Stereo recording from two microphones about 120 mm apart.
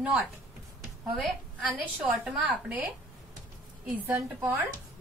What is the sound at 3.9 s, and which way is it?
Speech, 15° right (ahead or behind).